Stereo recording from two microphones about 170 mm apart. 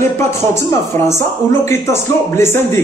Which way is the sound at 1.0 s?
15° left (ahead or behind).